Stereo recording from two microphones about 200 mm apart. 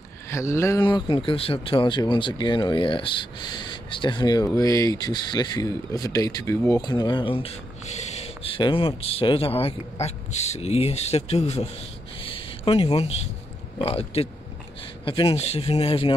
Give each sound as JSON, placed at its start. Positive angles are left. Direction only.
{"t": 0.3, "sound": "speech", "side_deg": 15}
{"t": 12.3, "sound": "a sound", "side_deg": 25}
{"t": 13.7, "sound": "speech", "side_deg": 30}